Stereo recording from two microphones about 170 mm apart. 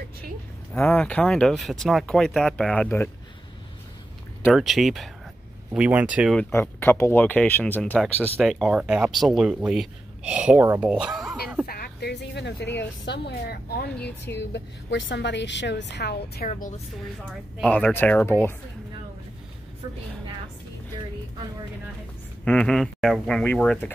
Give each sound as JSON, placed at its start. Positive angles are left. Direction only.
{"t": 0.8, "sound": "speech", "side_deg": 10}
{"t": 4.5, "sound": "speech", "side_deg": 0}
{"t": 6.3, "sound": "speech", "side_deg": 10}
{"t": 11.6, "sound": "speech", "side_deg": 65}
{"t": 12.7, "sound": "a woman's voice", "side_deg": 90}
{"t": 14.0, "sound": "a woman's voice", "side_deg": 90}
{"t": 16.4, "sound": "speech", "side_deg": 50}
{"t": 17.2, "sound": "speech", "side_deg": -5}
{"t": 17.6, "sound": "speech", "side_deg": 10}
{"t": 22.4, "sound": "speech", "side_deg": 5}